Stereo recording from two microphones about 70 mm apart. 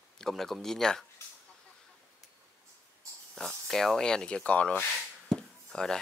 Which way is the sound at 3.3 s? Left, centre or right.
Centre.